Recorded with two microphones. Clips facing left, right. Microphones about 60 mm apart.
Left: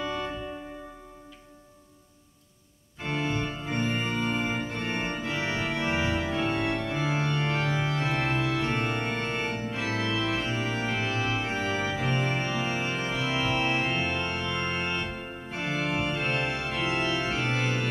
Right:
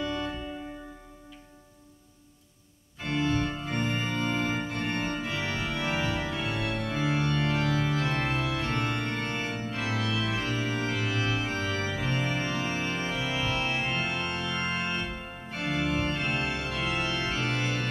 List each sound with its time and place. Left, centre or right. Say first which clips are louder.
0.0 s music: even; centre
3.1 s organ: right 2 dB; centre
5.3 s organ: left 2 dB; centre
6.2 s organ: left 4 dB; centre
7.2 s organ: even; centre
9.4 s organ: left 2 dB; left
11.9 s organ: left 2 dB; centre
12.5 s organ: left 1 dB; centre
13.8 s organ: left 2 dB; centre
15.5 s organ: even; centre